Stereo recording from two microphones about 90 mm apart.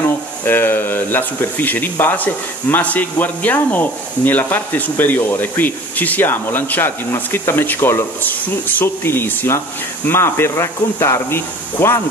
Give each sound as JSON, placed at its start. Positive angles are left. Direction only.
{"t": 0.0, "sound": "speech", "side_deg": 25}